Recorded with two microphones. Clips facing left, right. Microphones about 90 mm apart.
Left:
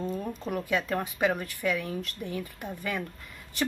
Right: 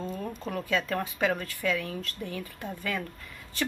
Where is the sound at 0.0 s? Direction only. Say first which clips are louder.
Left 2 dB; 10° left (ahead or behind).